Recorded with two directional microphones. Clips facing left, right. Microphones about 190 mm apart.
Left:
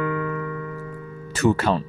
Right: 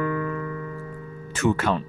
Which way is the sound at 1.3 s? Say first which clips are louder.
Left 3 dB; 35° left (ahead or behind).